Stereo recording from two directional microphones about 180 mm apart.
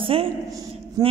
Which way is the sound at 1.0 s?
20° right (ahead or behind).